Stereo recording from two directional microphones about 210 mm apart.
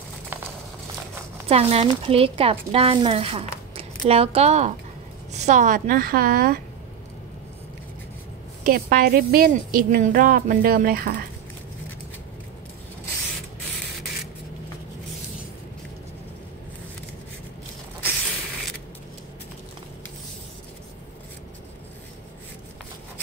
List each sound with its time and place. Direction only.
1.5 s a woman's voice: 30° right (ahead or behind); by 6.6 s 45° right (ahead or behind)
8.6 s a woman's voice: 45° right (ahead or behind)